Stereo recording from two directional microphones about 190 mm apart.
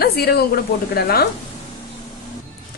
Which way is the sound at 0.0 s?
55° left (ahead or behind).